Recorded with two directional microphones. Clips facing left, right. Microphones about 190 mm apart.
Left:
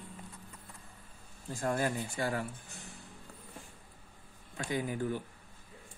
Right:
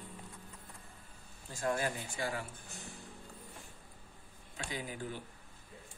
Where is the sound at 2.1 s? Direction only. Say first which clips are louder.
Left 4 dB; 45° left (ahead or behind).